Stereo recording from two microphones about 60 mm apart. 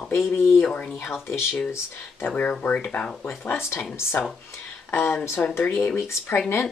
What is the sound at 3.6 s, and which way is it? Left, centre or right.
Speech, left.